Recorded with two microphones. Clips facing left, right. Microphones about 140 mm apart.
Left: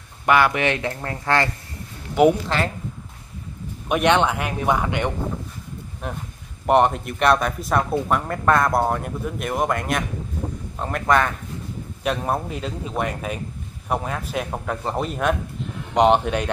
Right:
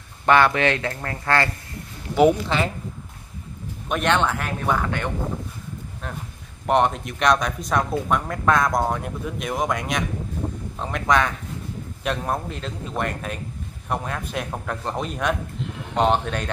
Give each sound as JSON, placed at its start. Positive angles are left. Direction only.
{"t": 0.3, "sound": "speech", "side_deg": 15}
{"t": 3.9, "sound": "a man's voice", "side_deg": 10}